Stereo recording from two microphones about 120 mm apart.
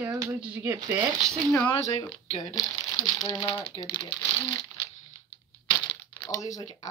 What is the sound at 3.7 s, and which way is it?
Crumpling, 40° left (ahead or behind).